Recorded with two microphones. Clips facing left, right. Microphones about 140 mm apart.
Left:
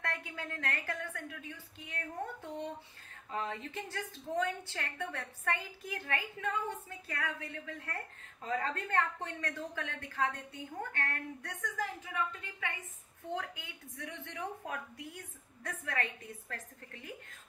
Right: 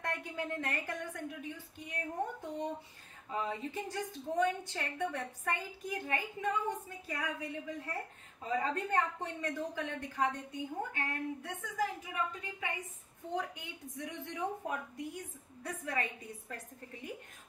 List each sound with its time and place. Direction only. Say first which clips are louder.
0.0 s a woman's voice: right 3 dB; 20° right (ahead or behind)
3.3 s a woman's voice: right 2 dB; 10° right (ahead or behind)